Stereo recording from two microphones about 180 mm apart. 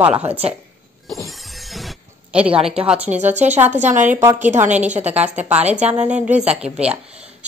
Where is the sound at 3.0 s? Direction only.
40° right (ahead or behind).